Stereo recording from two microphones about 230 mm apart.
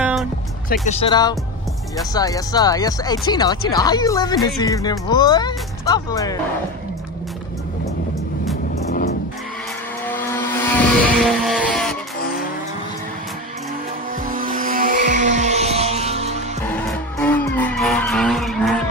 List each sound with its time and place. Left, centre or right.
0.0 s music: centre
0.8 s speech: left
10.0 s vehicle: centre
14.2 s music: right
16.6 s music: centre